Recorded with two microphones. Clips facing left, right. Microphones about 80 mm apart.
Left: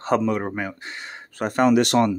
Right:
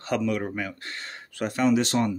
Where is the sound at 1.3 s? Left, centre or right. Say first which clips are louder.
Left 5 dB; left.